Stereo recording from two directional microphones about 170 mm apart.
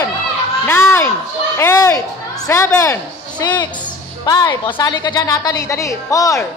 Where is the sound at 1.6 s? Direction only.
15° left (ahead or behind).